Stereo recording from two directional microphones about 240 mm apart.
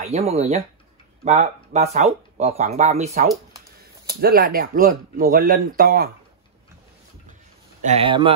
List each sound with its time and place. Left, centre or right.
0.0 s speech: right
4.2 s speech: right
7.8 s speech: right